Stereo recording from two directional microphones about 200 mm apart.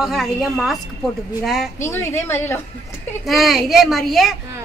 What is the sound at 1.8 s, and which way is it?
Speech, 15° left (ahead or behind).